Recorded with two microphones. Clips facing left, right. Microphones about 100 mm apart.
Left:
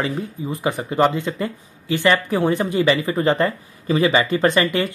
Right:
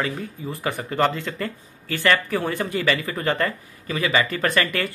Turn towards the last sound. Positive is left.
turn(degrees=20)  # may be behind; listen again after turning